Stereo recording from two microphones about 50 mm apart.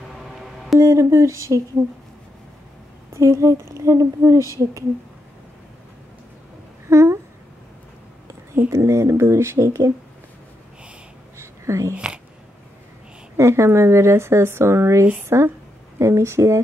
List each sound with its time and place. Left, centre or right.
0.1 s music: centre
0.7 s speech: right
3.1 s speech: right
6.9 s a sound: right
8.6 s speech: right
11.3 s a sound: right
13.4 s speech: right